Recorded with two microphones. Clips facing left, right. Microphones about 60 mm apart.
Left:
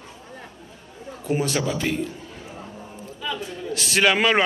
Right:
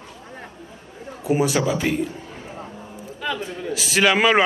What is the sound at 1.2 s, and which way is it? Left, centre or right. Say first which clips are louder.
Speech: right 4 dB; centre.